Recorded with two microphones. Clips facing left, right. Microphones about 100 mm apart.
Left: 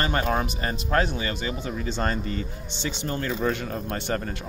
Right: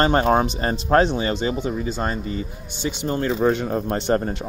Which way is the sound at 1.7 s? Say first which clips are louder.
Right 3 dB; 5° right (ahead or behind).